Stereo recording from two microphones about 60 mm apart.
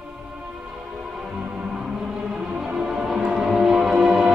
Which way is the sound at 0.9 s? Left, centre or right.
Centre.